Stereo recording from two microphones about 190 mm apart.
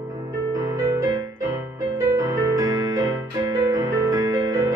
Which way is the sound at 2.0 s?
15° right (ahead or behind).